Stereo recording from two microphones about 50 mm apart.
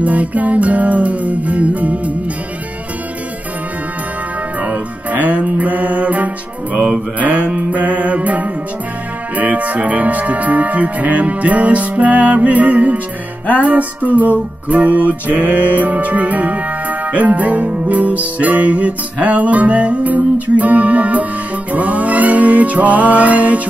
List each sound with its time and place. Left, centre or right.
0.0 s music: right
4.6 s music: right